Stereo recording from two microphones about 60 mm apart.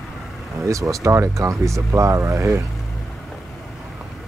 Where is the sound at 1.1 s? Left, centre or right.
Right.